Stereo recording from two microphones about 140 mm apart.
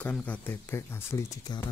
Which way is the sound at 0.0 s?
10° left (ahead or behind).